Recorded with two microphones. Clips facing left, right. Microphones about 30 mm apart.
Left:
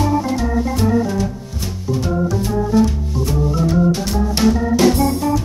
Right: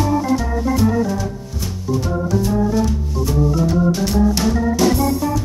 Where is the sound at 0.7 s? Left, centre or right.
Centre.